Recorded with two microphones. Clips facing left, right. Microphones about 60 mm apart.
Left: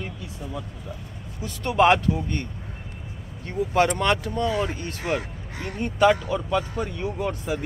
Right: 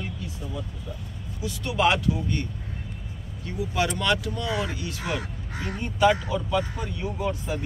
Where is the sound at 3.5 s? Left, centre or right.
Left.